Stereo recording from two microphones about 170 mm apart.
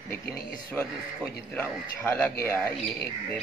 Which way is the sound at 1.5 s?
10° left (ahead or behind).